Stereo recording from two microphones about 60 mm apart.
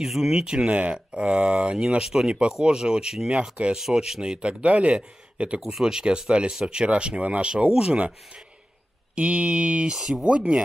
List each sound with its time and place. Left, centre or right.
0.0 s speech: centre
5.6 s speech: centre
9.1 s speech: centre